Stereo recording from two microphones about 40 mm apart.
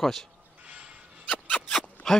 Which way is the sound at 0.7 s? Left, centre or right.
Right.